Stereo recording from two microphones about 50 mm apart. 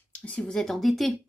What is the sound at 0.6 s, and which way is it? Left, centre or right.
Speech, centre.